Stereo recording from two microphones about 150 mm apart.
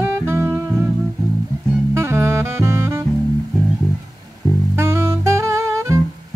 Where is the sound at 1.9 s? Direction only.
15° right (ahead or behind).